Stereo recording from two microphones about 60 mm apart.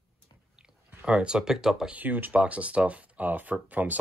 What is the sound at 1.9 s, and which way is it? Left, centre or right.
Speech, right.